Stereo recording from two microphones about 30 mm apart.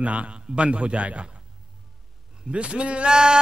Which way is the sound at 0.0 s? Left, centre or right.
Right.